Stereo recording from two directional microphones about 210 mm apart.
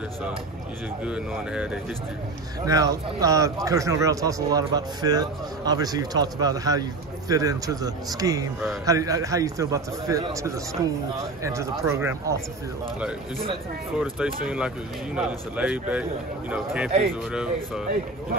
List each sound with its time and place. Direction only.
1.0 s speech: 5° right (ahead or behind)
2.6 s a man's voice: 15° right (ahead or behind)
13.9 s speech: 5° right (ahead or behind)